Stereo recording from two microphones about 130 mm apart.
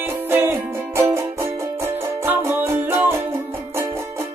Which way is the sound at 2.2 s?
15° right (ahead or behind).